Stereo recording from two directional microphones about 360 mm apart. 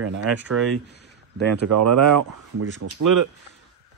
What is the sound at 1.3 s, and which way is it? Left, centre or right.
Speech, right.